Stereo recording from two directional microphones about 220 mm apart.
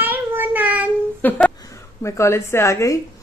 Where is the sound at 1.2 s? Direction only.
5° left (ahead or behind).